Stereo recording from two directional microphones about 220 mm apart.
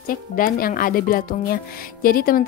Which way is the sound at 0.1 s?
40° left (ahead or behind).